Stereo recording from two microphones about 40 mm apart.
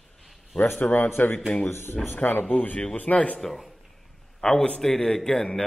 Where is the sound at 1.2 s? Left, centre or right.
Left.